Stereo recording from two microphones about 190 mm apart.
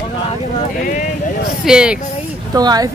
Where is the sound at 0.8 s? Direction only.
45° left (ahead or behind).